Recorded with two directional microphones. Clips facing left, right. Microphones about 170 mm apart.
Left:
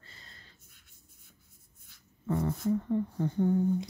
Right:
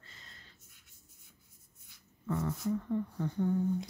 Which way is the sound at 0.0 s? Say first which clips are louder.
Left 1 dB; 35° left (ahead or behind).